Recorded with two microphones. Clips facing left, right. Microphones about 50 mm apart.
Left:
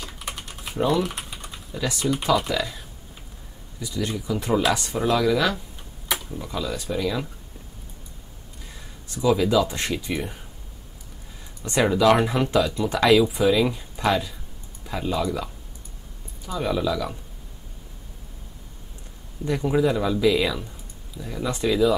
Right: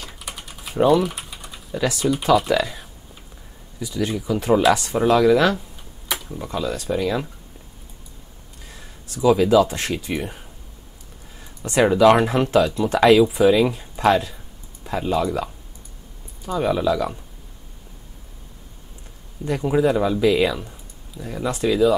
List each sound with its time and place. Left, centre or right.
0.0 s typing: centre
0.8 s speech: centre
4.9 s speech: centre
6.5 s speech: centre
9.2 s speech: centre
11.6 s speech: centre
12.2 s speech: centre
16.4 s speech: centre
19.4 s speech: centre